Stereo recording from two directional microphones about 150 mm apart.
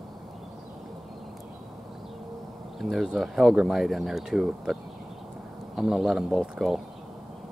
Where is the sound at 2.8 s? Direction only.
Centre (ahead or behind).